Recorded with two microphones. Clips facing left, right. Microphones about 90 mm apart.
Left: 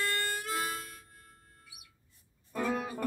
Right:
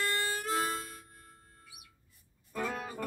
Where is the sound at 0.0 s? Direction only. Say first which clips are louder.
Right 1 dB; 40° right (ahead or behind).